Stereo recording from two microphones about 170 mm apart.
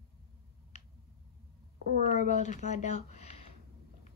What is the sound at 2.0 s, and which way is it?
Speech, 45° left (ahead or behind).